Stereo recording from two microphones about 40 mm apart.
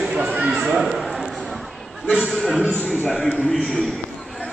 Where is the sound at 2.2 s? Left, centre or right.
Centre.